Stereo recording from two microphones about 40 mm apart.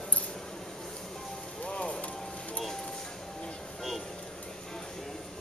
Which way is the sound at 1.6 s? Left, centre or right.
Left.